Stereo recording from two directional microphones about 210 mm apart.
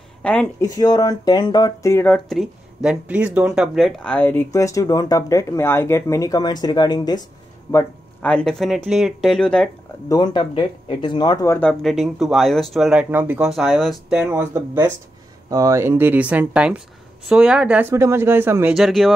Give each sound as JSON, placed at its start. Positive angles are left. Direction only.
{"t": 0.2, "sound": "speech", "side_deg": 5}
{"t": 0.7, "sound": "speech", "side_deg": 15}
{"t": 7.7, "sound": "speech", "side_deg": 5}
{"t": 10.0, "sound": "speech", "side_deg": 20}
{"t": 11.8, "sound": "speech", "side_deg": 0}